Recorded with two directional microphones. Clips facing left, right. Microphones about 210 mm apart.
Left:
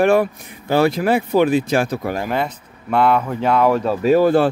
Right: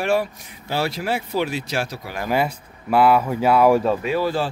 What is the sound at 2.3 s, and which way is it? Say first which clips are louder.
Speech: even; 5° right (ahead or behind).